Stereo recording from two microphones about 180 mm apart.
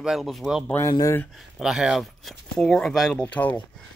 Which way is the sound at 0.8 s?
20° left (ahead or behind).